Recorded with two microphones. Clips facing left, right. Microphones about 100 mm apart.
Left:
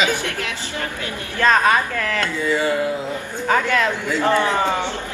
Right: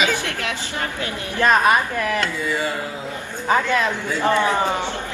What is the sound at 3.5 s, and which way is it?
Speech, 20° right (ahead or behind).